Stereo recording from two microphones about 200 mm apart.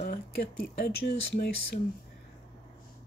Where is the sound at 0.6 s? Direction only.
55° left (ahead or behind).